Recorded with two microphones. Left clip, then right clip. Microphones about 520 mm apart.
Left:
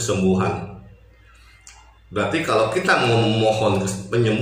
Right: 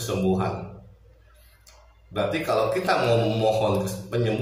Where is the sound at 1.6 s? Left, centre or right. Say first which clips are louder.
Left 5 dB; right.